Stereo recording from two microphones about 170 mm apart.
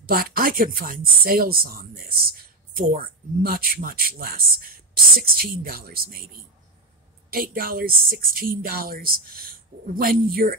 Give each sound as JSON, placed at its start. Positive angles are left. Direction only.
{"t": 0.0, "sound": "speech", "side_deg": -60}